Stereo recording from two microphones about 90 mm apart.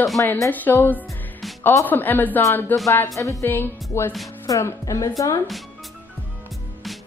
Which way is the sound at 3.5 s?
25° left (ahead or behind).